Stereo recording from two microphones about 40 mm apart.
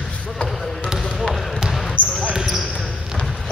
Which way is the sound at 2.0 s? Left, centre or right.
Left.